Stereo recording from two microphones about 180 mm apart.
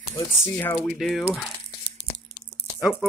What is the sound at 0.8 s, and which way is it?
Speech, centre (ahead or behind).